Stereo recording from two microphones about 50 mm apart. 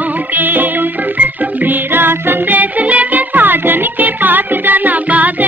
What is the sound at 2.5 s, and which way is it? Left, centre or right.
Music, right.